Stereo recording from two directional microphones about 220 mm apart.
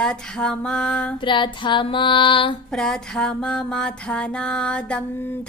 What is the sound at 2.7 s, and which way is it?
A woman's voice, centre (ahead or behind).